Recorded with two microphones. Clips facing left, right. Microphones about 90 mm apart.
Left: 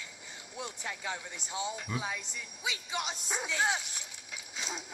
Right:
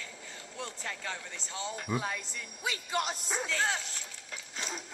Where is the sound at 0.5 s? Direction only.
15° left (ahead or behind).